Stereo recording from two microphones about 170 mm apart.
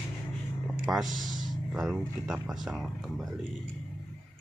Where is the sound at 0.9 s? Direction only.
5° right (ahead or behind).